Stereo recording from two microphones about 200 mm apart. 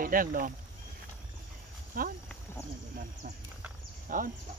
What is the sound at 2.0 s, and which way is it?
Speech, 45° right (ahead or behind).